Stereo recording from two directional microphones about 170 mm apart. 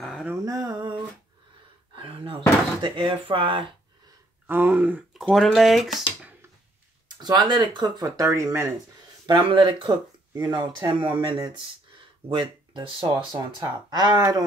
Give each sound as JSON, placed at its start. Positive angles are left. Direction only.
{"t": 0.0, "sound": "a sound", "side_deg": -5}
{"t": 0.5, "sound": "a sound", "side_deg": -20}
{"t": 2.0, "sound": "speech", "side_deg": -30}
{"t": 4.5, "sound": "speech", "side_deg": -10}
{"t": 5.2, "sound": "speech", "side_deg": 0}
{"t": 7.2, "sound": "speech", "side_deg": -25}
{"t": 9.2, "sound": "speech", "side_deg": -30}